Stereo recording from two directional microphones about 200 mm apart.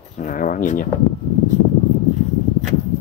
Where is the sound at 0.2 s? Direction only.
40° left (ahead or behind).